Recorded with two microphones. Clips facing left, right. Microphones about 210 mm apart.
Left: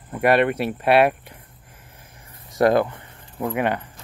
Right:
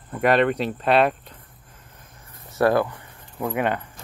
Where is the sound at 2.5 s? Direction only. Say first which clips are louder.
Left 2 dB; 20° left (ahead or behind).